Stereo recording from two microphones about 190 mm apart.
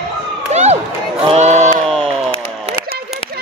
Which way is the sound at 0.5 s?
35° right (ahead or behind).